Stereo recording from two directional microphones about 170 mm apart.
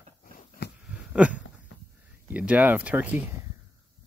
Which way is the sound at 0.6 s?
90° left.